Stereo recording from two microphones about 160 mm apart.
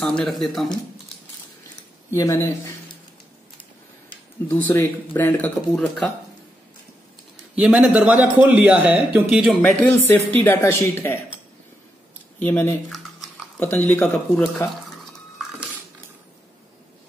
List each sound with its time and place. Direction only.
0.0 s speech: centre (ahead or behind)
2.1 s speech: 15° left (ahead or behind)
4.5 s speech: 10° left (ahead or behind)
7.5 s a man's voice: 5° right (ahead or behind)
9.6 s speech: 10° left (ahead or behind)
12.4 s speech: 10° left (ahead or behind)